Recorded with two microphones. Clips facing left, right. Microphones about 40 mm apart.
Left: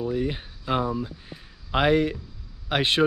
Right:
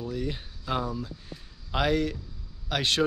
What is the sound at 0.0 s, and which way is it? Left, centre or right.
Speech, left.